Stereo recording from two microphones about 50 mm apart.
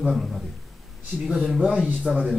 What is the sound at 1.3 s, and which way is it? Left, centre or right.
Speech, centre.